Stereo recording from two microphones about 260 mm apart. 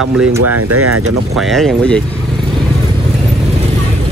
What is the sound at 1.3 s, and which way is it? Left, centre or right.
Speech, centre.